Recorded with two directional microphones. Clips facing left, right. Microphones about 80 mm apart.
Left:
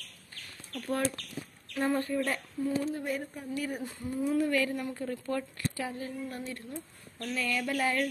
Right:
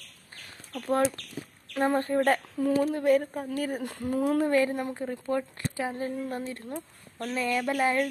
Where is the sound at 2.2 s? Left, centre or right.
Right.